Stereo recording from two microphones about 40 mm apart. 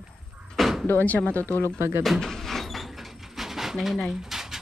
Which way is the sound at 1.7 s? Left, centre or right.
Right.